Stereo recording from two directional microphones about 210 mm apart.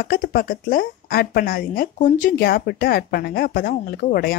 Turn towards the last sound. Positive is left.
turn(degrees=45)  # may be behind; listen again after turning